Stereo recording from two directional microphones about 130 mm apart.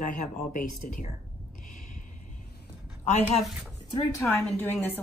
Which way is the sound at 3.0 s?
60° left (ahead or behind).